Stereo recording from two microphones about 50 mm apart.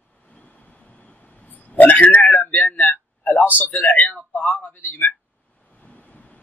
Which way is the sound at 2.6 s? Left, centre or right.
Left.